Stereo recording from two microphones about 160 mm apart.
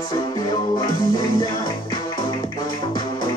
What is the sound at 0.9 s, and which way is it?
Music, 25° left (ahead or behind).